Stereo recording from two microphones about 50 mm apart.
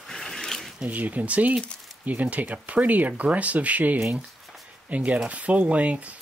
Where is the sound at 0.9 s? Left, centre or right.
Right.